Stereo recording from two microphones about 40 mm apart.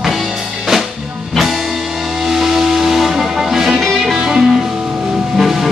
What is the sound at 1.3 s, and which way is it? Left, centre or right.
Music, centre.